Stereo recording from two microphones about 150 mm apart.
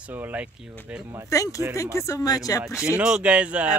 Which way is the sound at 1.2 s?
20° left (ahead or behind).